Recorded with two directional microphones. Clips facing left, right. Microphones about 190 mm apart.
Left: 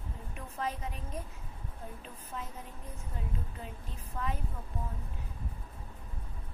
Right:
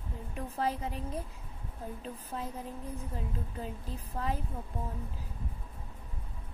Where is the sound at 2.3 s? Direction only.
40° right (ahead or behind).